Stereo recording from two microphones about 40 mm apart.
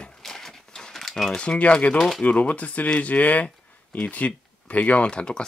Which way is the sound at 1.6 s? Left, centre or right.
Left.